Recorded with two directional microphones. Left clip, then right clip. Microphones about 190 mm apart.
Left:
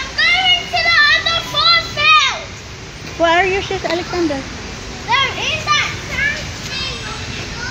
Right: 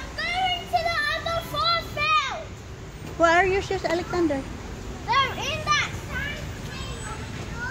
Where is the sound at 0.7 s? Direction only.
60° right (ahead or behind).